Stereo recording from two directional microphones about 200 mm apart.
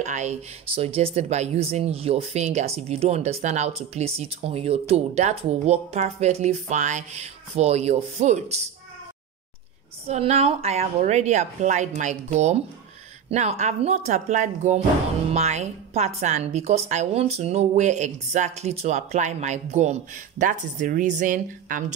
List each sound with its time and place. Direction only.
0.0 s speech: 35° right (ahead or behind)
10.0 s speech: 30° right (ahead or behind)